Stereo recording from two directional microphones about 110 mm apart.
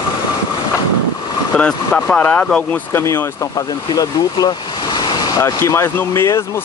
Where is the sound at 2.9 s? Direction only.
25° left (ahead or behind).